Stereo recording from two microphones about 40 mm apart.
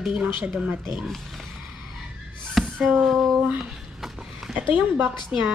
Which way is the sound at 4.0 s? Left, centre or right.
Centre.